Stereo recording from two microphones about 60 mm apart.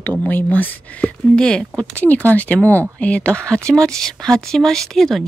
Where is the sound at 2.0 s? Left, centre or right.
Left; by 5.2 s centre.